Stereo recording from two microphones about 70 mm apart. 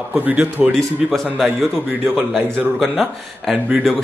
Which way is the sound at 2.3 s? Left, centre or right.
Centre.